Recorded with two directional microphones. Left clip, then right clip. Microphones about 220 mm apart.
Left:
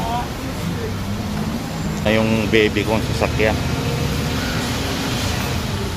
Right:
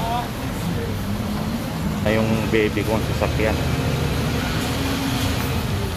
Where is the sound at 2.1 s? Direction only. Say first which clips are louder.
Left 4 dB; 20° left (ahead or behind).